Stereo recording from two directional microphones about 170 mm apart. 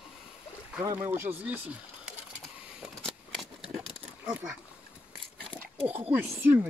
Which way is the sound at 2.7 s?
Centre (ahead or behind).